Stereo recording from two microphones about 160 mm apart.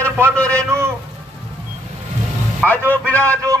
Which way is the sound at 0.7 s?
15° right (ahead or behind).